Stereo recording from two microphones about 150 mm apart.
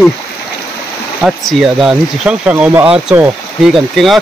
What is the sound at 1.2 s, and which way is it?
Speech, centre (ahead or behind).